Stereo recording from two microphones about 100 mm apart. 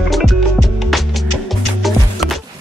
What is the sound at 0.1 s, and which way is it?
Music, centre (ahead or behind).